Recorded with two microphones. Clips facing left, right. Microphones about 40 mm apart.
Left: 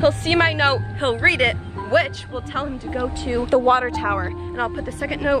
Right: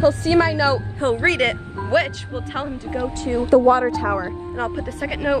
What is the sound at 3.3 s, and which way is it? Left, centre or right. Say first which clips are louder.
Speech: right 2 dB; left.